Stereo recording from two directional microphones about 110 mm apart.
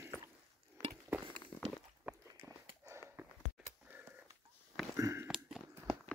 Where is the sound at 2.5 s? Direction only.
30° right (ahead or behind).